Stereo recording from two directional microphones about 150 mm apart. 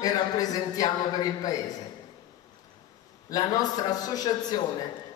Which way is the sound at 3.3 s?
25° left (ahead or behind).